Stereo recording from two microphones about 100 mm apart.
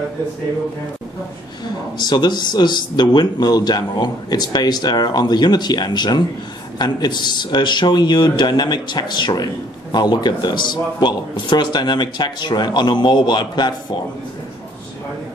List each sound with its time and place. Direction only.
2.0 s speech: 45° left (ahead or behind)